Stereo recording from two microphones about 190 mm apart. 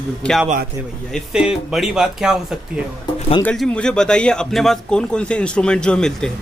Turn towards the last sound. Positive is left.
turn(degrees=5)  # may be behind; listen again after turning